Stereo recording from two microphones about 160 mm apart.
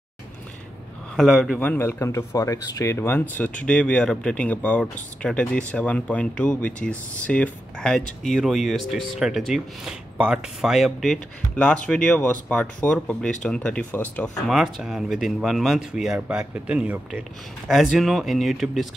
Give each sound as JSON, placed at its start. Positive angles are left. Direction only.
{"t": 1.1, "sound": "speech", "side_deg": 0}